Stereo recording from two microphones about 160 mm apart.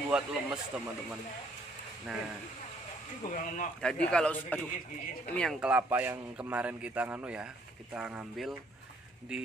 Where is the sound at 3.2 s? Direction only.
60° left (ahead or behind).